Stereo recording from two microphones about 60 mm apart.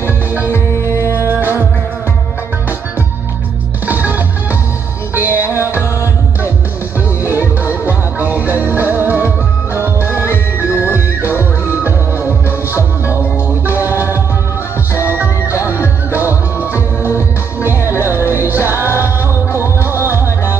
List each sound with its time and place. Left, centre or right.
0.0 s music: right
0.5 s music: left
3.8 s music: right
7.6 s music: right
10.9 s music: left
12.4 s music: right
16.2 s music: right
19.5 s music: left
20.0 s music: right